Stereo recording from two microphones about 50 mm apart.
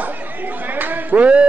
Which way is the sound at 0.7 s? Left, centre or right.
Right.